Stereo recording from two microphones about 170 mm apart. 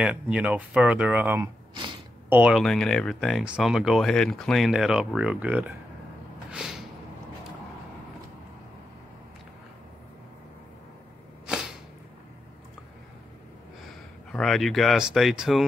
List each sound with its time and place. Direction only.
0.0 s speech: 5° right (ahead or behind)
1.7 s speech: 30° right (ahead or behind)
2.2 s speech: 10° right (ahead or behind)
6.5 s a sound: 5° right (ahead or behind)
14.3 s speech: centre (ahead or behind)